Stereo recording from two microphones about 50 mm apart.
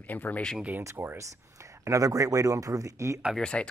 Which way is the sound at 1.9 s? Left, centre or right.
Right.